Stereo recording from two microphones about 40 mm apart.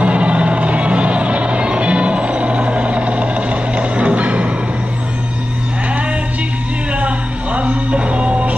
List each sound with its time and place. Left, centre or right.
0.0 s music: right
7.0 s music: right